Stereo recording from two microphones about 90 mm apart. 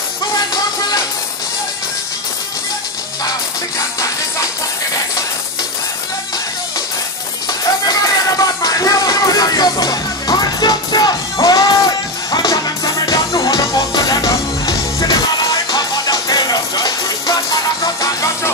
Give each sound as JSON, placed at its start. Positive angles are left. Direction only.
{"t": 7.8, "sound": "music", "side_deg": 45}
{"t": 18.0, "sound": "music", "side_deg": 40}